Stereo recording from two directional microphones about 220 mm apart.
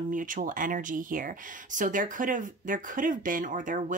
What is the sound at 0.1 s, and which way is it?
Speech, 35° right (ahead or behind).